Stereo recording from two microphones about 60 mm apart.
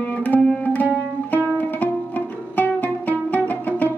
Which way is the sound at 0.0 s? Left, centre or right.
Left.